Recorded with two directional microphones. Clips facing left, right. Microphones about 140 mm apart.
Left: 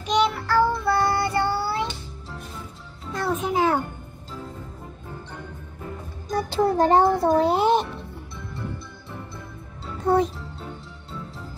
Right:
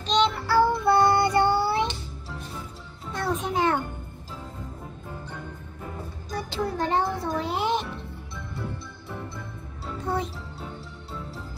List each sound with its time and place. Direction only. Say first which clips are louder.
0.0 s child singing: left 1 dB; 10° left (ahead or behind)
0.4 s child singing: even; 10° right (ahead or behind)
3.1 s music: left 3 dB; centre (ahead or behind)
6.3 s a child's voice: left 8 dB; 40° left (ahead or behind)